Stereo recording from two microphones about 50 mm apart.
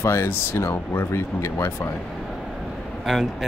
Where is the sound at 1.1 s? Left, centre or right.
Left.